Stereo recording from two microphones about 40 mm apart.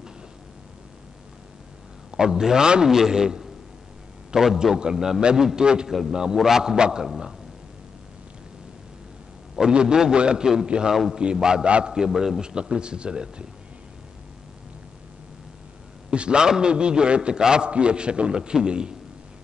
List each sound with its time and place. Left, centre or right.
2.0 s a man's voice: centre
5.9 s a man's voice: centre
9.6 s a man's voice: right
11.9 s a man's voice: centre
12.4 s a man's voice: right
16.1 s a man's voice: right